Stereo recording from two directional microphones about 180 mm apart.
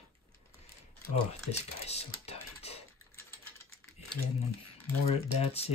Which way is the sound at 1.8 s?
35° left (ahead or behind).